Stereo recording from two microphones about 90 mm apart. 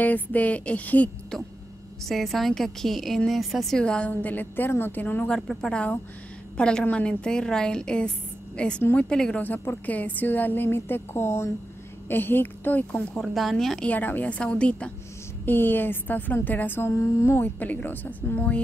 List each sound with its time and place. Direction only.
0.0 s a woman's voice: 15° left (ahead or behind)
2.0 s a woman's voice: centre (ahead or behind); by 13.1 s 20° left (ahead or behind)
13.1 s a woman's voice: centre (ahead or behind)
13.8 s a woman's voice: 20° left (ahead or behind)
15.4 s a woman's voice: 25° left (ahead or behind)